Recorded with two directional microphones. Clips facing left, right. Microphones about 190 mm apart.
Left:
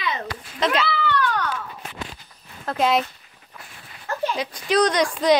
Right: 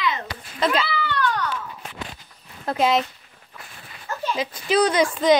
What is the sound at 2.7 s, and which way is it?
Speech, centre (ahead or behind).